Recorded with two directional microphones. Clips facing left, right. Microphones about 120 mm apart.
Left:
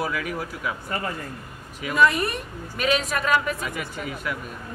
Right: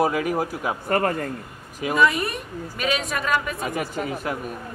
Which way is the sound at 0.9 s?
55° right (ahead or behind).